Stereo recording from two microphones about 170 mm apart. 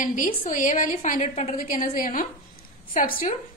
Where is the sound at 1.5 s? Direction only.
55° left (ahead or behind).